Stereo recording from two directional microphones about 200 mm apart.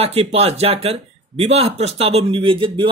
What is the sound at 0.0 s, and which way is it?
Speech, 30° right (ahead or behind).